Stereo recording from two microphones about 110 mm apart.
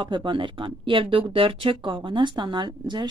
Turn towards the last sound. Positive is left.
turn(degrees=-45)  # may be behind; listen again after turning